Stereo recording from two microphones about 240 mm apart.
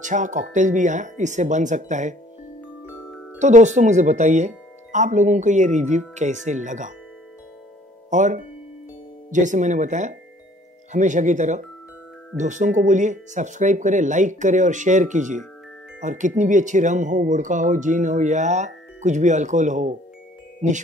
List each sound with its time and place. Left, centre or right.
0.0 s speech: right
3.3 s speech: right
8.1 s speech: right